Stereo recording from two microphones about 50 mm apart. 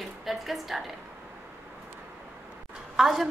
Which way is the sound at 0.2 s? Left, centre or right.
Centre.